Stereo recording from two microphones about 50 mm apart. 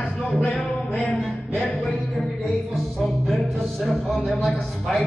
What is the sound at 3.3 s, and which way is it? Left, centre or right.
A man's voice, centre.